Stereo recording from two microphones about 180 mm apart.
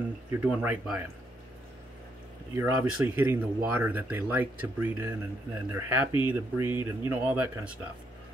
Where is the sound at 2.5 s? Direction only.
15° right (ahead or behind).